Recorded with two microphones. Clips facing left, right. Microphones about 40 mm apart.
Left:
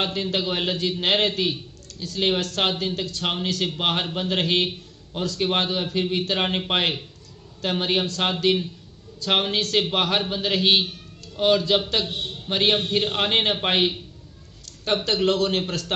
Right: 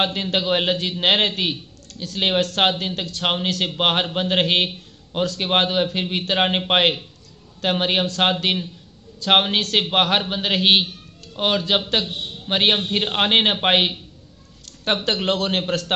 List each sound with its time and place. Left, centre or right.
0.0 s a man's voice: right
15.1 s a man's voice: right